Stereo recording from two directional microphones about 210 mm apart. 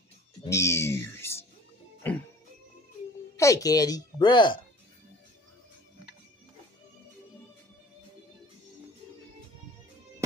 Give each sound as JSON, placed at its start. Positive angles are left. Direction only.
{"t": 0.5, "sound": "music", "side_deg": 15}
{"t": 3.3, "sound": "speech", "side_deg": 15}